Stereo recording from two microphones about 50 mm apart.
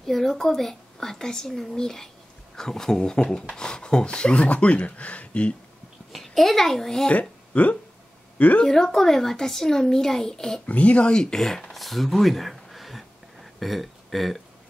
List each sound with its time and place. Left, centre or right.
0.0 s speech: centre; by 5.5 s left
6.1 s speech: centre
7.1 s speech: left
8.6 s speech: centre
10.7 s speech: left; by 14.4 s centre